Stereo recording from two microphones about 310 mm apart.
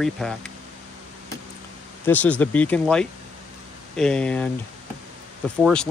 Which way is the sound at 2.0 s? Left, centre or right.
Centre.